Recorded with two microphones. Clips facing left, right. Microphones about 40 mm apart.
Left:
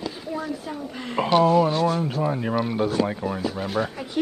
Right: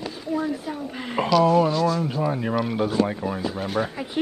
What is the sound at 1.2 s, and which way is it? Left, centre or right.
Speech, left.